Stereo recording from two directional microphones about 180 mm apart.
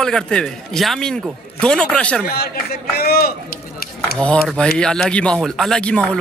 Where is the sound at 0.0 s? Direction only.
5° left (ahead or behind).